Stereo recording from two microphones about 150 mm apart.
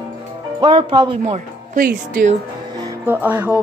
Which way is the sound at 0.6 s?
35° right (ahead or behind).